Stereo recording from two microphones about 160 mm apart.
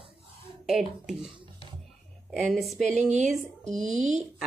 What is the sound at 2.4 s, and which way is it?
Speech, centre (ahead or behind).